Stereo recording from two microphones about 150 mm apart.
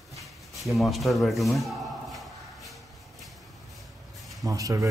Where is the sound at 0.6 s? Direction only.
Centre (ahead or behind).